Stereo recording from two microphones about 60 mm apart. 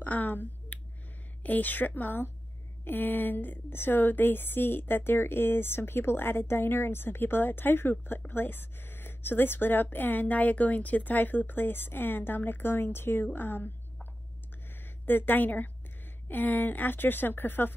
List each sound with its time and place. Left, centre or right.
0.0 s a woman's voice: left
14.7 s a woman's voice: left